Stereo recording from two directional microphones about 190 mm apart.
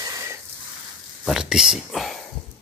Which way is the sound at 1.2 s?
5° right (ahead or behind).